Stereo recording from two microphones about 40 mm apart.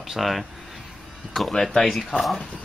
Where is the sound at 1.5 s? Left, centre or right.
Centre.